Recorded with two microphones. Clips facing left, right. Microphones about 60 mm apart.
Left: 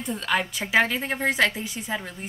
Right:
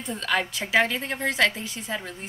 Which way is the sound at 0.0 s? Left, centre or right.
Centre.